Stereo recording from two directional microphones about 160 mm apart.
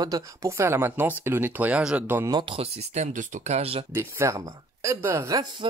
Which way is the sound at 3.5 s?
40° right (ahead or behind).